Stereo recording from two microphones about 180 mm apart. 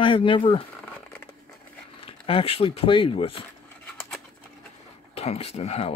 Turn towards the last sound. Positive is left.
turn(degrees=35)  # may be behind; listen again after turning